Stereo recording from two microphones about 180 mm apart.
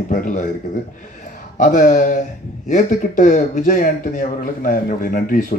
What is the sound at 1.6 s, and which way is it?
Speech, 45° left (ahead or behind).